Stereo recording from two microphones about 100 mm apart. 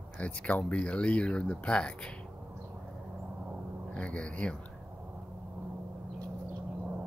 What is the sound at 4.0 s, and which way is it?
Speech, 10° left (ahead or behind).